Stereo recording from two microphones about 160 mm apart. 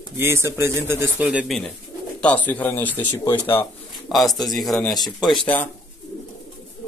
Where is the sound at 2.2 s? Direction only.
10° left (ahead or behind).